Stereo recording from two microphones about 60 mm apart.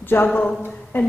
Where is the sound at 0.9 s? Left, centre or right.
Left.